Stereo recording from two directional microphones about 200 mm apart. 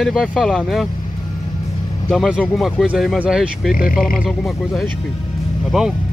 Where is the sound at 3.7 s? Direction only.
45° left (ahead or behind).